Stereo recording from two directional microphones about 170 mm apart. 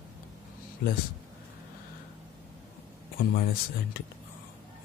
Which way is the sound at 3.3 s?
60° left (ahead or behind).